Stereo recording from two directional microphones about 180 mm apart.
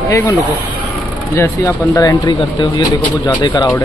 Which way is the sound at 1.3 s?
15° left (ahead or behind).